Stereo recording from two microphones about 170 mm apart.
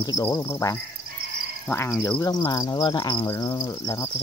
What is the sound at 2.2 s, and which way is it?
Cricket, 25° left (ahead or behind).